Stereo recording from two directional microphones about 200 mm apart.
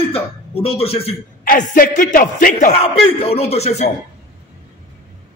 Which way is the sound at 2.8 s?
30° left (ahead or behind).